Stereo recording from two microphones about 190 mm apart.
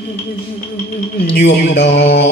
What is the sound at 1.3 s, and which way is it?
Mantra, 60° left (ahead or behind).